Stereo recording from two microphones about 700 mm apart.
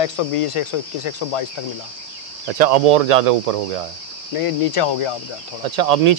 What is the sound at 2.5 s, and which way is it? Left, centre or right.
Speech, right.